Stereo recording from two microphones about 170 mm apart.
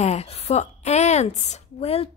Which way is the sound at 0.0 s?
40° left (ahead or behind).